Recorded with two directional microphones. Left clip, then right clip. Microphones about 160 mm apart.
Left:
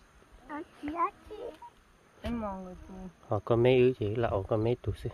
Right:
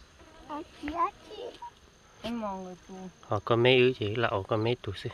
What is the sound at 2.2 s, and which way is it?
Speech, 10° left (ahead or behind).